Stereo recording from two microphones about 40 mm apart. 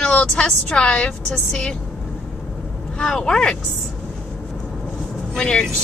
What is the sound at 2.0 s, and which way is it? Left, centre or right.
Vehicle, centre.